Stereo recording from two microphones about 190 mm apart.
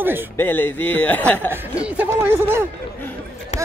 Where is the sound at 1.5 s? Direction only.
10° right (ahead or behind).